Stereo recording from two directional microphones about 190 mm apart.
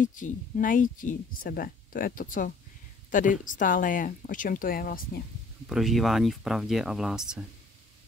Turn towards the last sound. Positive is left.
turn(degrees=-5)  # may be behind; listen again after turning